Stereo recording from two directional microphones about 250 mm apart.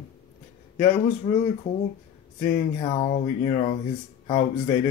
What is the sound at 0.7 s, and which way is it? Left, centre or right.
Speech, left.